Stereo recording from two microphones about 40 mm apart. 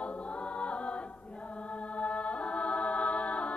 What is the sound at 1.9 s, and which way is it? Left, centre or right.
A capella, left.